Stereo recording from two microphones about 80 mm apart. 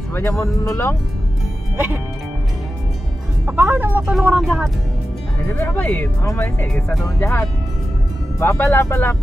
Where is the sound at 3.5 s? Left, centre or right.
Right.